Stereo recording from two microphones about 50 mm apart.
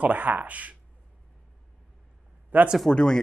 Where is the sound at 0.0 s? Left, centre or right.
Right.